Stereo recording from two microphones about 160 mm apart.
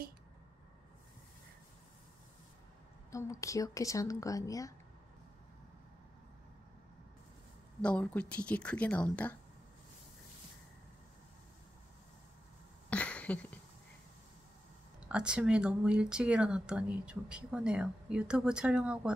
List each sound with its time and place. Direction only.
3.1 s speech: 20° left (ahead or behind)
7.8 s speech: 5° left (ahead or behind)
12.9 s a sound: 10° left (ahead or behind)
15.0 s speech: 5° right (ahead or behind)